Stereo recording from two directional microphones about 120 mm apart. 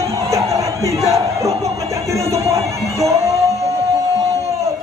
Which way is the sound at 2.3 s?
25° right (ahead or behind).